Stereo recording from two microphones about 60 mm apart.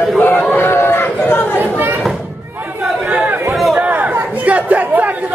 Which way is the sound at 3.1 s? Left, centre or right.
Right.